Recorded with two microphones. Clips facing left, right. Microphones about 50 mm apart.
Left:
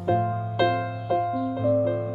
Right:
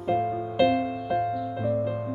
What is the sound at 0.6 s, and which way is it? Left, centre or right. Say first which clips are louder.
Music: right 1 dB; centre.